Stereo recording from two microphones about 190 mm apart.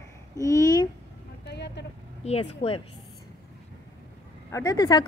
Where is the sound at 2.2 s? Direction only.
35° left (ahead or behind).